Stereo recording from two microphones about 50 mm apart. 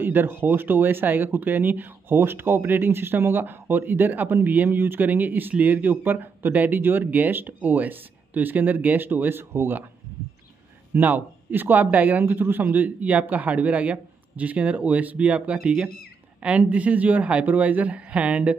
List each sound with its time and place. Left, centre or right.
0.0 s a man's voice: right
11.0 s a man's voice: right